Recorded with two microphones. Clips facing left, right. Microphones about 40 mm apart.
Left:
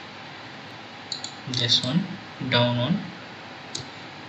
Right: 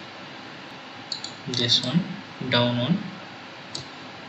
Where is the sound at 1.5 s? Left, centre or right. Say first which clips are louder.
Even; centre.